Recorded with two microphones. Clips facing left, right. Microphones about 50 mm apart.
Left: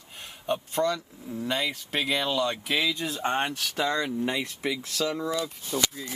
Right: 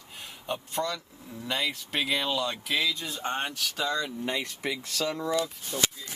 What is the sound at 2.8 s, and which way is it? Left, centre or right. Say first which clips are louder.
Speech: left 3 dB; left.